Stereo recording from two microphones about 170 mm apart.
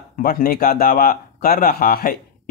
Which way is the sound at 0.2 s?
60° left (ahead or behind).